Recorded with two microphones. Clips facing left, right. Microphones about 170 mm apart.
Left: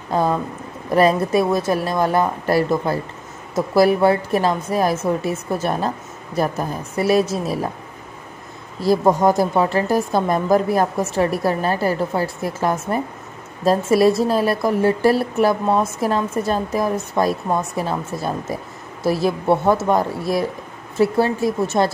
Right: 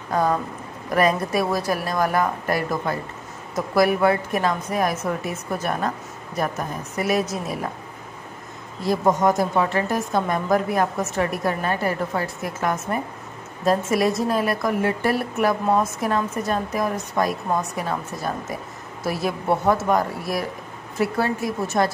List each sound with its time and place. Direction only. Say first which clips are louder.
0.8 s a woman's voice: left 4 dB; 30° left (ahead or behind)
8.8 s a woman's voice: left 4 dB; 35° left (ahead or behind)